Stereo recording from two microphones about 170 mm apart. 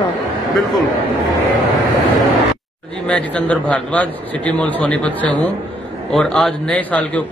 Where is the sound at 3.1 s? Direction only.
5° left (ahead or behind).